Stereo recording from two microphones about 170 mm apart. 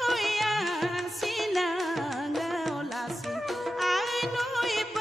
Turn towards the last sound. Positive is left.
turn(degrees=0)  # may be behind; listen again after turning